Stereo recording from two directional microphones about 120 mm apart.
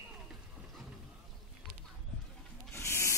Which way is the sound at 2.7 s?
20° left (ahead or behind).